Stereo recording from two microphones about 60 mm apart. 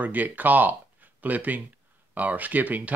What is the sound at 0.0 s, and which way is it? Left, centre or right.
Speech, right.